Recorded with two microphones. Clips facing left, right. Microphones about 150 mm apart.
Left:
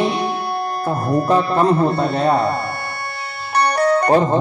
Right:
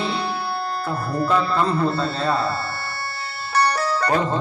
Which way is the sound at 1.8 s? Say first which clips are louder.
Left 5 dB; 15° left (ahead or behind).